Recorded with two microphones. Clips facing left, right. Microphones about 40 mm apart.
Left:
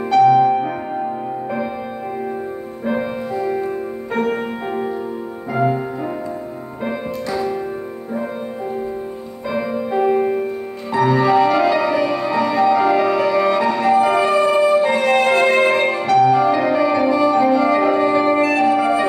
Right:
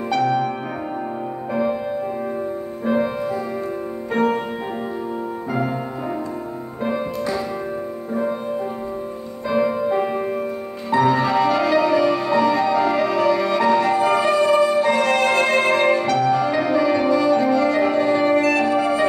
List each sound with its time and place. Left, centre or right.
0.2 s music: centre
2.8 s music: centre
5.5 s music: centre
6.8 s music: centre
9.5 s music: centre
11.1 s music: centre